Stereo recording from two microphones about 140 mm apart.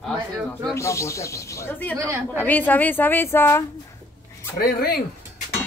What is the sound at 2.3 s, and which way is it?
A woman's voice, 15° left (ahead or behind).